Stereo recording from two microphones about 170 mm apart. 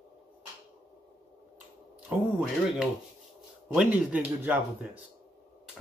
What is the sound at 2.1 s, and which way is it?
Speech, 10° right (ahead or behind).